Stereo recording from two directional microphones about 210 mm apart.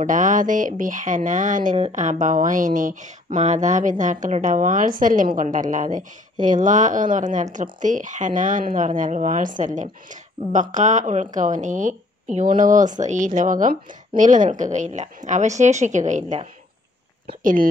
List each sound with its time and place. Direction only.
0.0 s speech: 40° right (ahead or behind)